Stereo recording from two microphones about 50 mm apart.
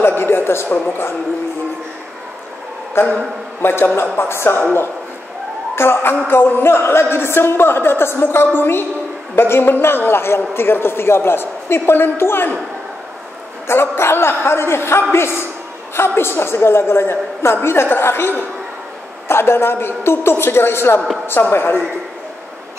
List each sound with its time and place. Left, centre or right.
0.0 s a sound: left
3.0 s a woman's voice: left
5.8 s a man's voice: left
13.7 s a woman's voice: left